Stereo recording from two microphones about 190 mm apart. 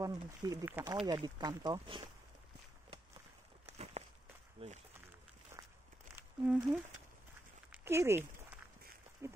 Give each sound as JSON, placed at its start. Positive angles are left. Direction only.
{"t": 0.0, "sound": "speech", "side_deg": -20}
{"t": 3.6, "sound": "walk", "side_deg": -35}
{"t": 4.6, "sound": "speech", "side_deg": -30}
{"t": 6.1, "sound": "a sound", "side_deg": -10}
{"t": 7.7, "sound": "speech", "side_deg": -15}